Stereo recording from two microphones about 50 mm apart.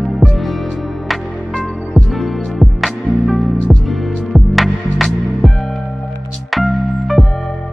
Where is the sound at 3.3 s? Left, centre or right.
Centre.